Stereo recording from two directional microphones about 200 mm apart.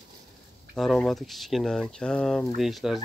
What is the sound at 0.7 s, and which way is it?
Speech, centre (ahead or behind).